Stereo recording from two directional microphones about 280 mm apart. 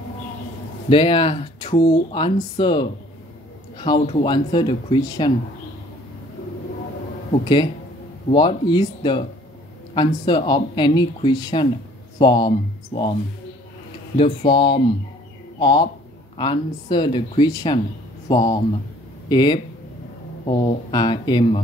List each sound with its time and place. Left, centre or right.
0.8 s speech: centre
7.4 s speech: centre
14.1 s speech: centre